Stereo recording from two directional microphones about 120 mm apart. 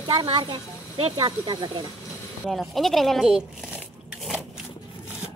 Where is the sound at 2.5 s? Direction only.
Centre (ahead or behind).